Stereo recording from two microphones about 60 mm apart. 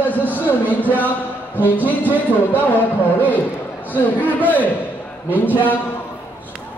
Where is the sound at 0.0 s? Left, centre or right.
Left.